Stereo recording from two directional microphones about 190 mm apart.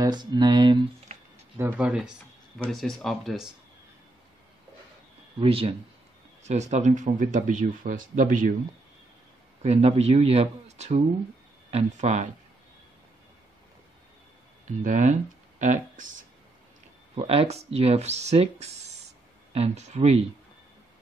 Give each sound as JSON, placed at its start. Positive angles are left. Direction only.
{"t": 0.0, "sound": "speech", "side_deg": -20}
{"t": 1.6, "sound": "speech", "side_deg": -10}
{"t": 5.4, "sound": "speech", "side_deg": -30}
{"t": 9.6, "sound": "speech", "side_deg": -35}
{"t": 14.8, "sound": "speech", "side_deg": -40}
{"t": 17.1, "sound": "speech", "side_deg": -30}